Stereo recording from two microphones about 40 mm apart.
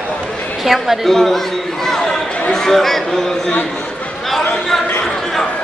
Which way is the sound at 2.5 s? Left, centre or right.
Centre.